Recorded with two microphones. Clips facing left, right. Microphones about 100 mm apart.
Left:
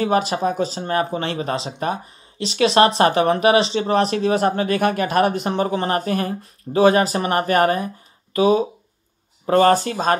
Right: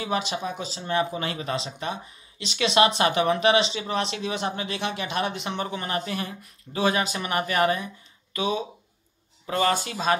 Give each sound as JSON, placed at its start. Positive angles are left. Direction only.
{"t": 0.0, "sound": "speech", "side_deg": 45}